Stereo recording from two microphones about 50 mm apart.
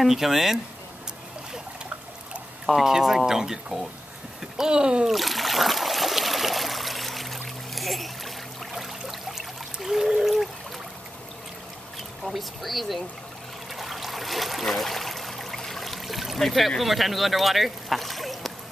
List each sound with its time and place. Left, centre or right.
0.0 s speech: centre
2.6 s speech: centre
5.0 s stream: centre
8.7 s trickle: centre
12.3 s speech: centre
13.7 s trickle: centre